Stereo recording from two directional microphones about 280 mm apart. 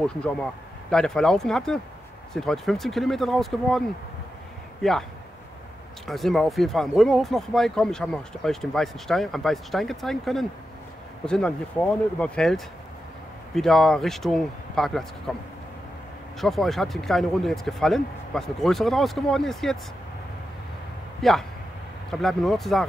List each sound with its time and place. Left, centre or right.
0.0 s speech: centre
6.0 s speech: centre
16.3 s speech: centre
21.2 s speech: centre